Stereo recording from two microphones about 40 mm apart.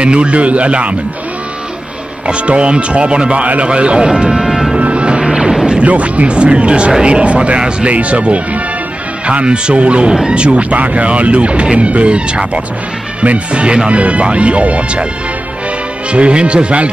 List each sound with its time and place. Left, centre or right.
0.0 s speech: right
2.2 s speech: right
4.4 s vehicle: centre
4.7 s music: right
5.2 s music: centre
5.9 s speech: right
16.1 s speech: right